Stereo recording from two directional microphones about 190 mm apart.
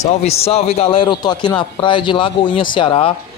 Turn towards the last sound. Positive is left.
turn(degrees=30)  # may be behind; listen again after turning